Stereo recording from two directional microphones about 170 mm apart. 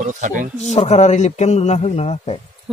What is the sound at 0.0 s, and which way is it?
Speech, 50° right (ahead or behind).